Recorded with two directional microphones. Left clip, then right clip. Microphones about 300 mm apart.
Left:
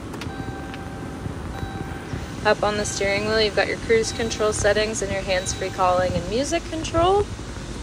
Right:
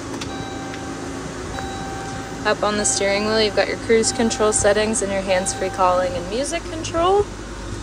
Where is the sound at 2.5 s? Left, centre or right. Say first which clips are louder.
Right 1 dB; centre.